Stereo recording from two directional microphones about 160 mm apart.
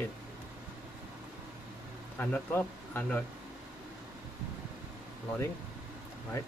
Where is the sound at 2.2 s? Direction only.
10° left (ahead or behind).